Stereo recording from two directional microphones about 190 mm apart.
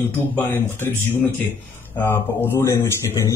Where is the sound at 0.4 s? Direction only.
10° left (ahead or behind).